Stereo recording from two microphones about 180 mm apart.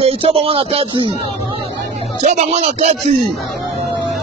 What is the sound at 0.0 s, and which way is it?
Speech, 35° right (ahead or behind).